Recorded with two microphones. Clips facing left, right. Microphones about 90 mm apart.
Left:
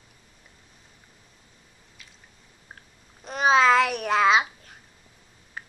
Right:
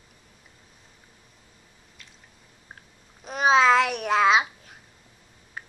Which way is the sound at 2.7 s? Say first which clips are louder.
Even; centre (ahead or behind).